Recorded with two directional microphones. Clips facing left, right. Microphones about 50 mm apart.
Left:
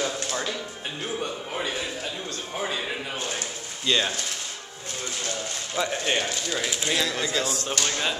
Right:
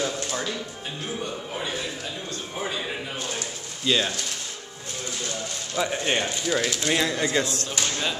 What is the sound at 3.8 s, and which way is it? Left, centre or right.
Speech, centre.